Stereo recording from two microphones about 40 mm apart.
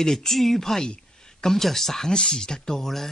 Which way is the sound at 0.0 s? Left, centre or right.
Centre.